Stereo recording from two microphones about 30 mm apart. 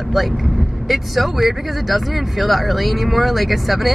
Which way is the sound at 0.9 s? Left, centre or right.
Centre.